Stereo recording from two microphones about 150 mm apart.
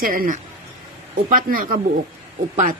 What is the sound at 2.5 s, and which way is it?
Speech, 55° right (ahead or behind).